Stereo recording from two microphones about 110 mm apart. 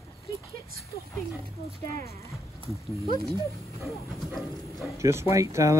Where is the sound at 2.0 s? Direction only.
25° left (ahead or behind).